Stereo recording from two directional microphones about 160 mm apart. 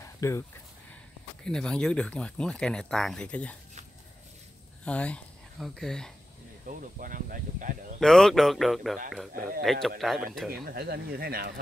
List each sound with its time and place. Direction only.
0.0 s a sound: 15° left (ahead or behind)
1.4 s speech: 5° left (ahead or behind)
4.8 s speech: 10° left (ahead or behind)
6.7 s speech: 50° right (ahead or behind)
8.0 s speech: 5° left (ahead or behind)
10.5 s speech: 70° right (ahead or behind)